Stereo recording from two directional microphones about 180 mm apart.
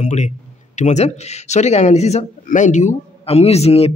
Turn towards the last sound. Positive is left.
turn(degrees=35)  # may be behind; listen again after turning